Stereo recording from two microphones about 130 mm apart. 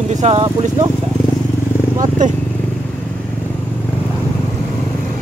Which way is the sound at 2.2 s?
80° right.